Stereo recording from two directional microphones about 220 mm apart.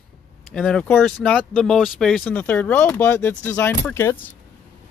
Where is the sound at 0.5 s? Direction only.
5° left (ahead or behind).